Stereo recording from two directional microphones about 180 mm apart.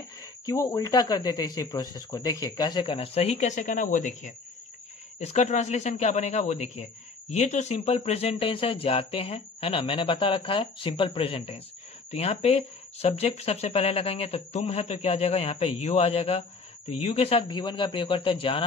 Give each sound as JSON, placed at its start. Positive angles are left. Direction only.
{"t": 0.5, "sound": "a man's voice", "side_deg": 20}